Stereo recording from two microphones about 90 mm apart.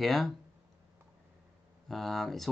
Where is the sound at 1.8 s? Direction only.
5° left (ahead or behind).